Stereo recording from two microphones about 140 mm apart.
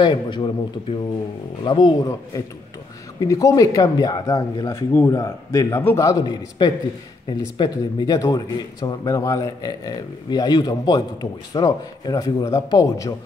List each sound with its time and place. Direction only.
0.0 s a man's voice: 35° left (ahead or behind)